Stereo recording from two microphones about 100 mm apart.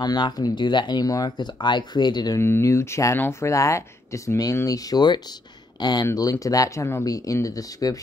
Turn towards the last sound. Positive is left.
turn(degrees=35)  # may be behind; listen again after turning